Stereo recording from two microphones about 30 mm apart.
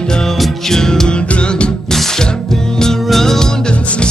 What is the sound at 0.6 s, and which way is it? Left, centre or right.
Music, centre.